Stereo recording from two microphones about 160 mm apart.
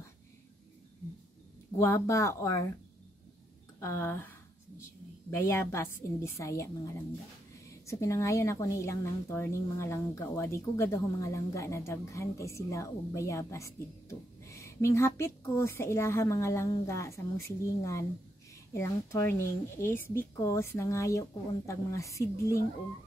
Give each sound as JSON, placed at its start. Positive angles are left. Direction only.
{"t": 1.8, "sound": "speech", "side_deg": 15}
{"t": 3.8, "sound": "a woman's voice", "side_deg": 15}
{"t": 5.3, "sound": "a woman's voice", "side_deg": 15}